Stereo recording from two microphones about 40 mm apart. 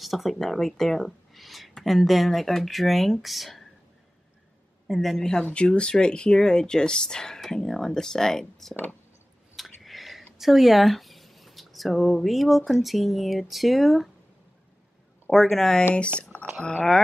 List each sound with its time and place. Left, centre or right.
0.0 s speech: centre
4.8 s speech: centre
5.7 s speech: left; by 14.1 s centre
15.3 s speech: centre
16.2 s a sound: left